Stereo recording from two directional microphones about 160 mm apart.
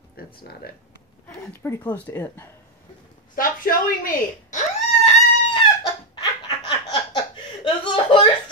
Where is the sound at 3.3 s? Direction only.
60° left (ahead or behind).